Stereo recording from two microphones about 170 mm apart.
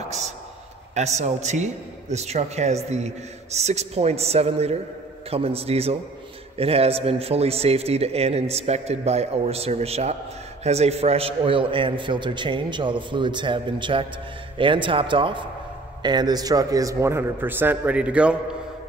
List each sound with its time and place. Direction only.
0.9 s a man's voice: 40° right (ahead or behind); by 18.4 s 5° right (ahead or behind)